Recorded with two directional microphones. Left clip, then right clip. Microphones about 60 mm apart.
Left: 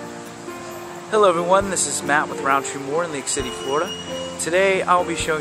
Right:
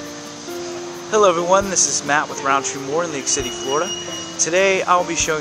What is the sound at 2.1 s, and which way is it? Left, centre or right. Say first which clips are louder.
Speech: left 2 dB; centre.